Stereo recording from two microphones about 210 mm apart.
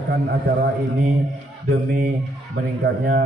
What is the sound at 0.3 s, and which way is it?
A man's voice, 45° right (ahead or behind).